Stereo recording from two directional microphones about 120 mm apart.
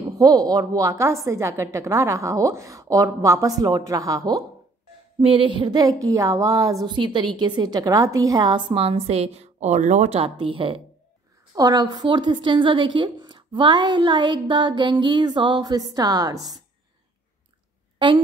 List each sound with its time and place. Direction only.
0.2 s a woman's voice: 35° right (ahead or behind)
5.2 s a woman's voice: 45° right (ahead or behind); by 10.0 s 90° right
10.1 s speech: 45° right (ahead or behind)
11.5 s a woman's voice: 30° right (ahead or behind)
17.9 s a woman's voice: 40° right (ahead or behind)